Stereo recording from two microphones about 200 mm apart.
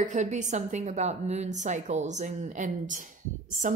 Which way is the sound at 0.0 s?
35° right (ahead or behind).